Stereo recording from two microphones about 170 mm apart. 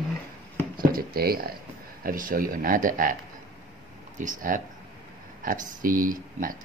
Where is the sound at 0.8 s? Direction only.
60° right (ahead or behind).